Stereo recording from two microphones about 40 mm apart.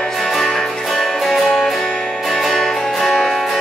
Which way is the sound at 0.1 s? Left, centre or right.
Centre.